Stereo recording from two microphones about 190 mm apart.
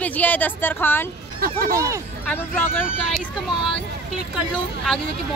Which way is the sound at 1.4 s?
50° right (ahead or behind).